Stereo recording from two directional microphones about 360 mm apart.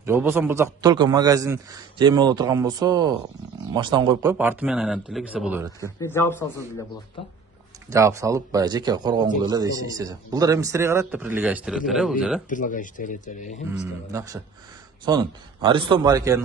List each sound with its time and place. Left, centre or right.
0.0 s a man's voice: centre
5.9 s speech: centre
7.9 s speech: centre
12.4 s speech: left
13.7 s speech: centre